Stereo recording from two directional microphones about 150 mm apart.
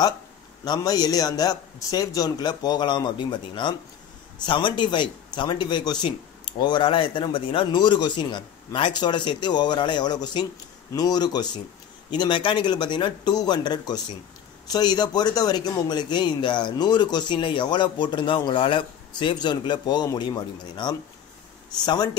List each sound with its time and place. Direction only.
0.7 s speech: 25° left (ahead or behind)